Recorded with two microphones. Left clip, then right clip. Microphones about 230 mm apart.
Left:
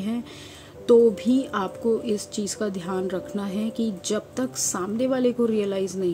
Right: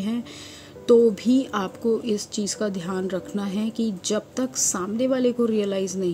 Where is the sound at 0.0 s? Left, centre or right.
Centre.